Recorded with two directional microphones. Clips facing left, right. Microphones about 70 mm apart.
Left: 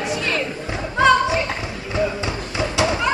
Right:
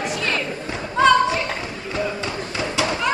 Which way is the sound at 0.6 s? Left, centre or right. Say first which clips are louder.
Even; centre.